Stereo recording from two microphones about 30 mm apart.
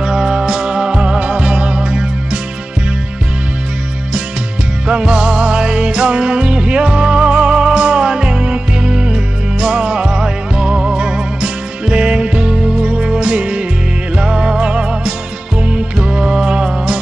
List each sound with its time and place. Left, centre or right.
0.0 s music: right
4.8 s music: right